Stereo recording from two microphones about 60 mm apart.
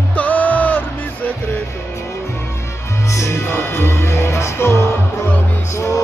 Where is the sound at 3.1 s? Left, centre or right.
Left.